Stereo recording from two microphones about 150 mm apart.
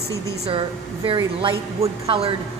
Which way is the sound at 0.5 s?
35° right (ahead or behind).